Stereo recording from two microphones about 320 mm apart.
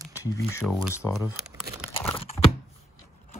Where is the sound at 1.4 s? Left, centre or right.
Centre.